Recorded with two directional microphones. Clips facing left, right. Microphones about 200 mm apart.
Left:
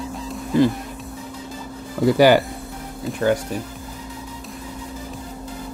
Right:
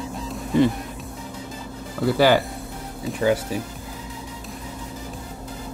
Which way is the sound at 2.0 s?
15° left (ahead or behind).